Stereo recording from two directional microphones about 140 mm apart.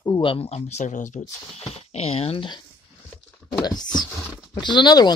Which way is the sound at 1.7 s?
45° left (ahead or behind).